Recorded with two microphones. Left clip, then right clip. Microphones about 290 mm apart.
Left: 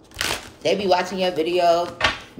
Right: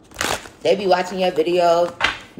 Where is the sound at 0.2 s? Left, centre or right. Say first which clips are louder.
Right 2 dB; right.